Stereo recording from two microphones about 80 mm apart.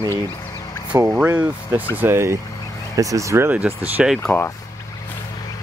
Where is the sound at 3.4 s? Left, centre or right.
Right.